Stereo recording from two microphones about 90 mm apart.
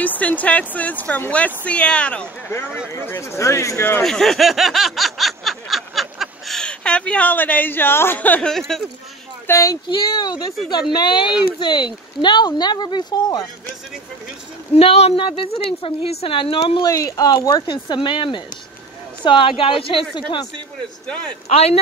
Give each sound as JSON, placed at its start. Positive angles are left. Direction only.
{"t": 0.0, "sound": "speech", "side_deg": 20}
{"t": 2.4, "sound": "speech", "side_deg": 25}
{"t": 4.0, "sound": "snicker", "side_deg": 5}
{"t": 8.5, "sound": "speech", "side_deg": 5}
{"t": 9.5, "sound": "speech", "side_deg": 35}
{"t": 9.8, "sound": "speech", "side_deg": 55}
{"t": 14.8, "sound": "a woman's voice", "side_deg": 80}
{"t": 16.8, "sound": "speech", "side_deg": 40}
{"t": 17.6, "sound": "speech", "side_deg": 60}
{"t": 20.2, "sound": "speech", "side_deg": 60}